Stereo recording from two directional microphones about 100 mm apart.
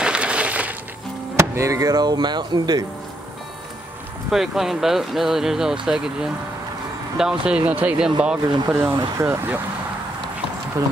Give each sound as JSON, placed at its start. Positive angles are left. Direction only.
{"t": 0.0, "sound": "a sound", "side_deg": -10}
{"t": 1.3, "sound": "speech", "side_deg": -30}
{"t": 4.3, "sound": "speech", "side_deg": -5}
{"t": 8.6, "sound": "speech", "side_deg": -25}